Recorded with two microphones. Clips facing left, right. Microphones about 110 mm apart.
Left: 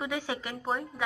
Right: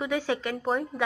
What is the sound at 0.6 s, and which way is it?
Speech, centre (ahead or behind).